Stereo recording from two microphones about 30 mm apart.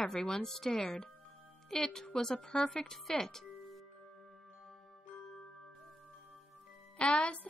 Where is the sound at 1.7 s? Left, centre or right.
Left.